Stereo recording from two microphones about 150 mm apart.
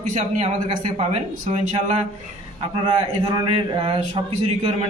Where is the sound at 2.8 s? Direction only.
30° right (ahead or behind).